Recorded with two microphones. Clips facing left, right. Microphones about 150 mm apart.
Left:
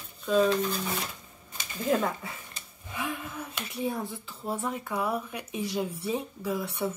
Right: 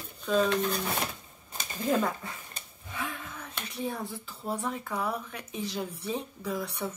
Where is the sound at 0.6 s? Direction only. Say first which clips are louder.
Even; 60° right (ahead or behind).